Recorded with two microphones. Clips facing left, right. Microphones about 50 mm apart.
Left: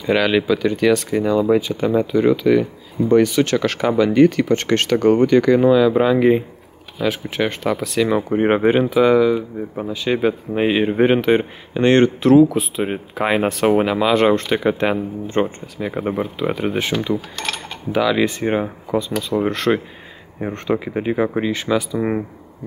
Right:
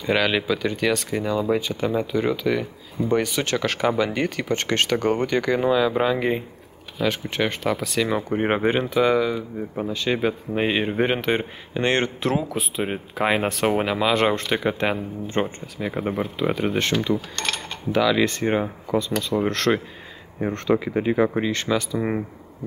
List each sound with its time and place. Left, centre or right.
0.0 s speech: centre